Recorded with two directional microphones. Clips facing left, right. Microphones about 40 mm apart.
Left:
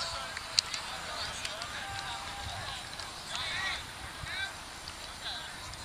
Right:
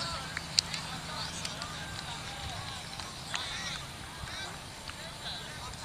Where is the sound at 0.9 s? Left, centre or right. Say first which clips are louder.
Left 1 dB; centre.